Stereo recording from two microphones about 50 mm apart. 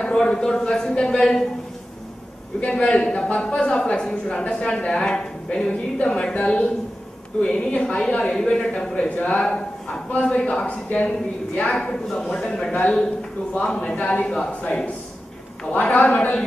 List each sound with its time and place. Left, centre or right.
0.0 s a man's voice: centre
2.6 s a man's voice: centre
8.4 s a man's voice: centre
8.9 s a woman's voice: left
9.4 s speech: centre
10.1 s a woman's voice: left
11.9 s a man's voice: centre
13.9 s speech: left
14.2 s a man's voice: centre
15.7 s a woman's voice: left